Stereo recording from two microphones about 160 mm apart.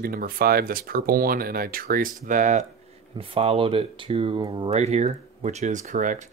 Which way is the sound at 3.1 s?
35° right (ahead or behind).